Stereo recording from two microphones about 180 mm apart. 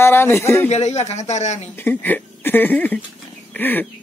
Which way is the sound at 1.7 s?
10° left (ahead or behind).